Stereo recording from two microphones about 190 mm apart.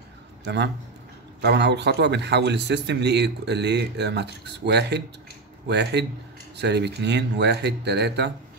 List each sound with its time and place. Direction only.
0.4 s a man's voice: 65° right (ahead or behind)